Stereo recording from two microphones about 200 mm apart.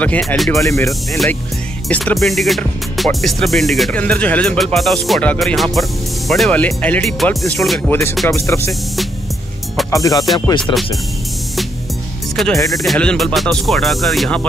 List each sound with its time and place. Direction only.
0.0 s speech: 5° left (ahead or behind)
0.5 s speech: 15° left (ahead or behind)
8.3 s speech: 15° left (ahead or behind)
9.8 s music: 15° left (ahead or behind)
10.6 s speech: centre (ahead or behind)
12.4 s speech: centre (ahead or behind)